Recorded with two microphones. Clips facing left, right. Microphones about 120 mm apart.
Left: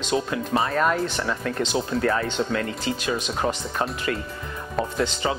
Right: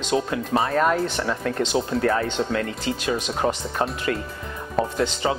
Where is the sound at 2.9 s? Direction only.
50° right (ahead or behind).